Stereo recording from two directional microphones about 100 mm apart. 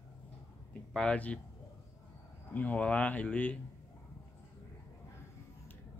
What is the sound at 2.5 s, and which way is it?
Speech, 15° left (ahead or behind).